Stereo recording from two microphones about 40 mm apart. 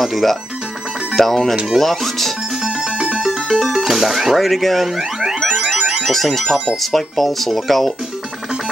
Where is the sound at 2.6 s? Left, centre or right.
Centre.